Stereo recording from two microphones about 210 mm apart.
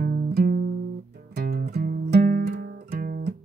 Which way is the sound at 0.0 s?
50° right (ahead or behind).